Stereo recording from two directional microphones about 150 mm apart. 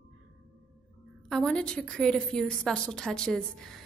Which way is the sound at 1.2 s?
5° left (ahead or behind).